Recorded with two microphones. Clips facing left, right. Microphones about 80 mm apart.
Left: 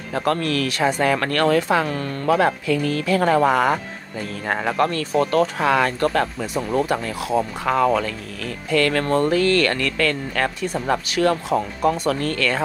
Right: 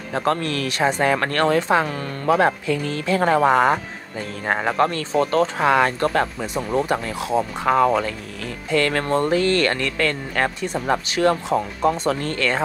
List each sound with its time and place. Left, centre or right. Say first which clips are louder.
0.1 s speech: left 1 dB; right